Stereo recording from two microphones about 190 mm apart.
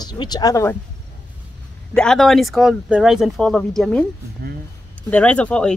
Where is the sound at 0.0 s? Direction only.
20° left (ahead or behind).